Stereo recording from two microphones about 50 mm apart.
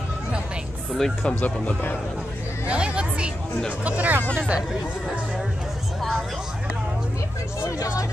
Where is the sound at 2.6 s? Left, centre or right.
Right.